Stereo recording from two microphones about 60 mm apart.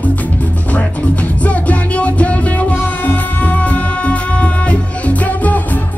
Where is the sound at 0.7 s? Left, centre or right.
Left.